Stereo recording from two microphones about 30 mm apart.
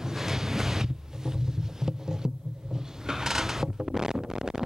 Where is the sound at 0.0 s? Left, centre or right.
Centre.